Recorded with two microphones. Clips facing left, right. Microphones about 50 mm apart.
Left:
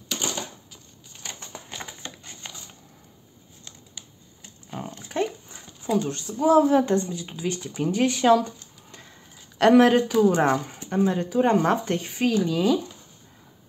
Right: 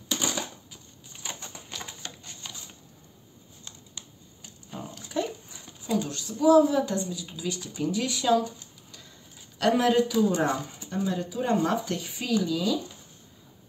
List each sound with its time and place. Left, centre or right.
1.7 s a sound: left
4.6 s dog: left
5.1 s speech: left
9.6 s speech: left